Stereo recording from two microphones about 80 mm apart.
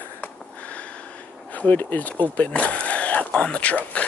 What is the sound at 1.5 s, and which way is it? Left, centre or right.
Speech, centre.